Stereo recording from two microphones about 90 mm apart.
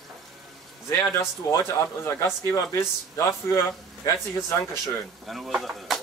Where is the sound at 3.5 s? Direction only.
35° left (ahead or behind).